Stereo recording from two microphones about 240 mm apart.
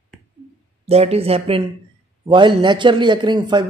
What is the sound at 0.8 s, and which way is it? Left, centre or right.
A man's voice, right.